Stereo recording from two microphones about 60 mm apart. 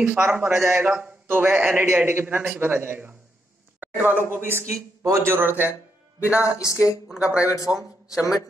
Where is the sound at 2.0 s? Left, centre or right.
Right.